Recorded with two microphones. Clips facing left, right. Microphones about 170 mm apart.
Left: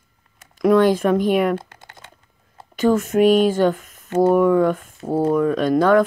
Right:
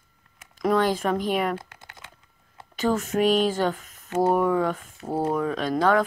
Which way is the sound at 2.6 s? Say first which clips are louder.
Left 7 dB; 50° left (ahead or behind).